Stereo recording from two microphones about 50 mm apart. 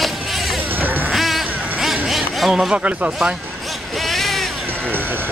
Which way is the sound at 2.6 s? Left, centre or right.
Right.